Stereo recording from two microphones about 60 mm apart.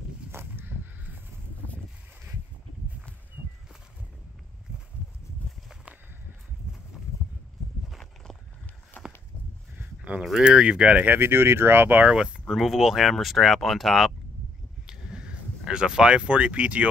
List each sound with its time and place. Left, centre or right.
0.3 s a sound: right
7.9 s walk: centre
8.9 s walk: left
10.4 s speech: centre
11.1 s speech: right
11.9 s speech: right
12.2 s speech: centre
14.9 s a sound: centre